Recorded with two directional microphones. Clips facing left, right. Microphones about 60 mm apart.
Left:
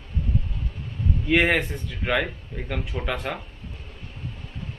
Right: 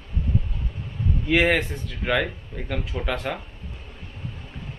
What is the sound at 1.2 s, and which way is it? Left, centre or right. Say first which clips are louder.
Speech: even; centre.